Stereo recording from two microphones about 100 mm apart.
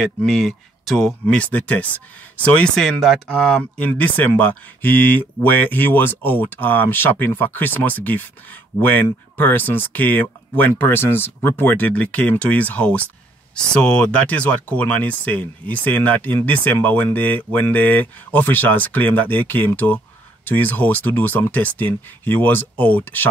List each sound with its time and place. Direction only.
0.0 s speech: 5° left (ahead or behind)